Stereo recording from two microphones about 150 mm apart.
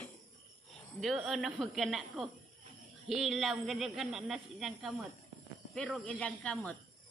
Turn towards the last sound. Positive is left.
turn(degrees=10)  # may be behind; listen again after turning